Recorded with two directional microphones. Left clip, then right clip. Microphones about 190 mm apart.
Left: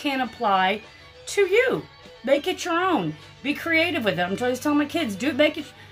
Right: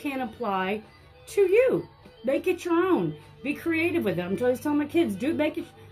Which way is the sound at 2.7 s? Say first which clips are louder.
Left 1 dB; 20° left (ahead or behind).